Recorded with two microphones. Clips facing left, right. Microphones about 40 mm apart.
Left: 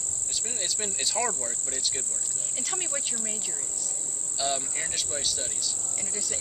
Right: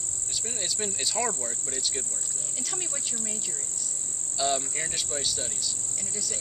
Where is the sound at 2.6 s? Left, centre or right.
Centre.